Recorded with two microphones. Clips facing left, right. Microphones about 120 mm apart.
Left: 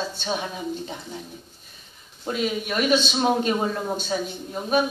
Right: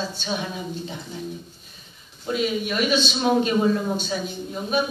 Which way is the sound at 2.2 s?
40° left (ahead or behind).